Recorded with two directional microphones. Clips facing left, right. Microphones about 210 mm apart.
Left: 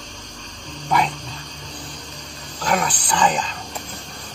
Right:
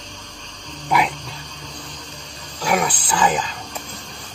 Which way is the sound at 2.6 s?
5° right (ahead or behind).